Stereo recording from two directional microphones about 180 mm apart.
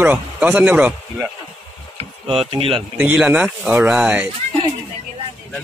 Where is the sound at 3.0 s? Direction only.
10° right (ahead or behind).